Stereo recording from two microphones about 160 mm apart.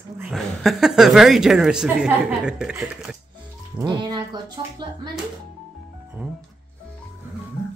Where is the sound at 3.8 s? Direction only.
30° right (ahead or behind).